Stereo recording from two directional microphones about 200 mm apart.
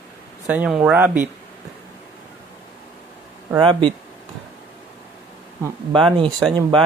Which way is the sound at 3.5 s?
25° right (ahead or behind).